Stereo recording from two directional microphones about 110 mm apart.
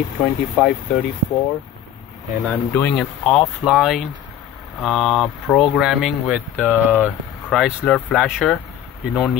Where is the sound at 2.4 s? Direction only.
15° left (ahead or behind).